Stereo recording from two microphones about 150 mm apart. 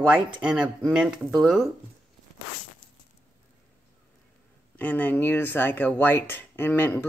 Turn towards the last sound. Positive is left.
turn(degrees=15)  # may be behind; listen again after turning